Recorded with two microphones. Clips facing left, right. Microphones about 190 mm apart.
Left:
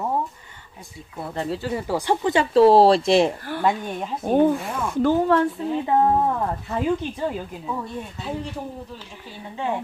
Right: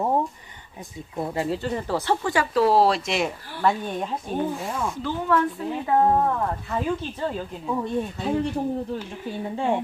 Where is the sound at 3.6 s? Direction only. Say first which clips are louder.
Right 1 dB; 10° left (ahead or behind).